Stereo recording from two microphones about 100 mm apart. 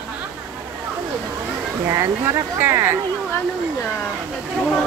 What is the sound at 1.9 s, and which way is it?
Speech, 30° right (ahead or behind).